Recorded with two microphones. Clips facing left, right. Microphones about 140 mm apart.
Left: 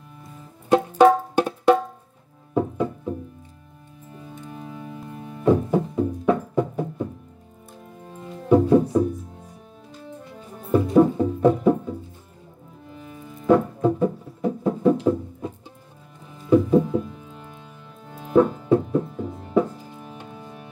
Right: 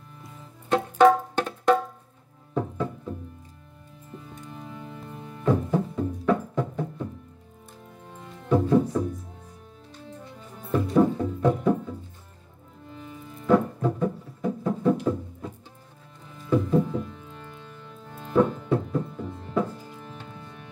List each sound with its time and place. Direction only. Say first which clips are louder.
0.2 s music: left 2 dB; 25° left (ahead or behind)
1.4 s music: left 4 dB; 10° left (ahead or behind)
4.6 s music: left 3 dB; 15° left (ahead or behind)
8.5 s music: left 5 dB; 15° left (ahead or behind)
10.7 s music: left 5 dB; 15° left (ahead or behind)
13.7 s music: left 5 dB; 15° left (ahead or behind)